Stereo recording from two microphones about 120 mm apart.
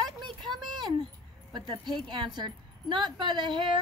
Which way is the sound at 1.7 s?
40° right (ahead or behind).